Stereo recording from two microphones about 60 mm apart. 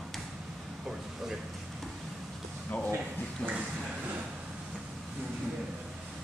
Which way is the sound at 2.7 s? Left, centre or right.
Left.